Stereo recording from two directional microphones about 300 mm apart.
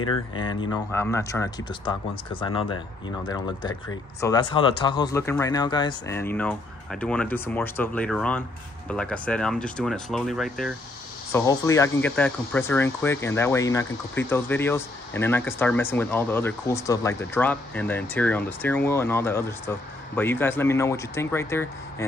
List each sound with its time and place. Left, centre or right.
0.1 s speech: centre